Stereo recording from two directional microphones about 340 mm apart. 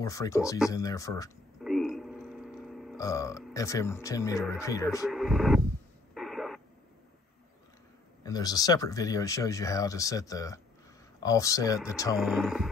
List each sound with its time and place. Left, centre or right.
0.0 s speech: centre
1.6 s burping: centre
5.0 s speech: centre
6.1 s radio: centre
8.2 s speech: centre